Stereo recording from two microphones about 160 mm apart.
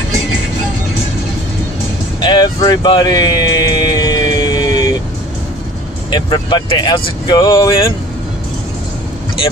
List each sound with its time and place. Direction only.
2.2 s music: 30° left (ahead or behind)
6.0 s speech: 30° left (ahead or behind)